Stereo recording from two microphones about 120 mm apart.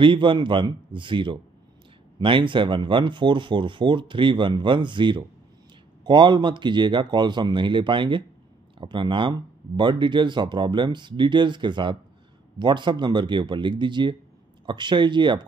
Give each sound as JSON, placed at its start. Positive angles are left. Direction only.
{"t": 0.0, "sound": "speech", "side_deg": -45}